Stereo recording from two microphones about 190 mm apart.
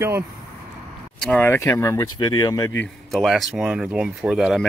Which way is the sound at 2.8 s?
Centre (ahead or behind).